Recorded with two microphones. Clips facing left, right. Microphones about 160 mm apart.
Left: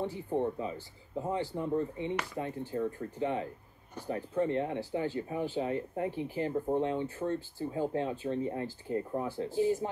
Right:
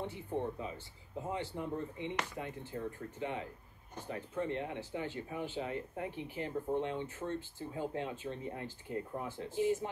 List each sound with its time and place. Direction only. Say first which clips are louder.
0.0 s speech: left 6 dB; 35° left (ahead or behind)